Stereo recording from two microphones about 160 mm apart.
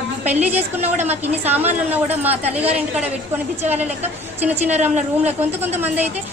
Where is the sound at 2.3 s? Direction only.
40° right (ahead or behind).